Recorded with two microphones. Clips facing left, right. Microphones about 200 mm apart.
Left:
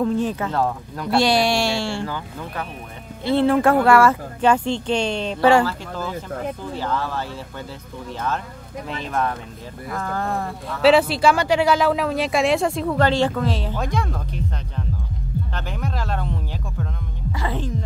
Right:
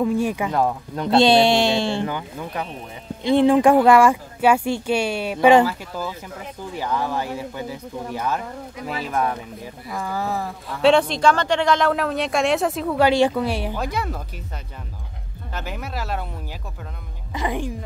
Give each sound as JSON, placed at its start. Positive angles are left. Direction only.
{"t": 0.0, "sound": "speech", "side_deg": -10}
{"t": 15.5, "sound": "speech", "side_deg": -5}